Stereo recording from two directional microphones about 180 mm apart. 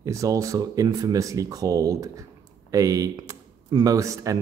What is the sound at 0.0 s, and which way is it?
Speech, 20° right (ahead or behind).